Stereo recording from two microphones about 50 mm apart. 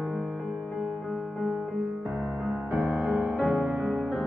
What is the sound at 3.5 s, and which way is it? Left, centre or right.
Music, centre.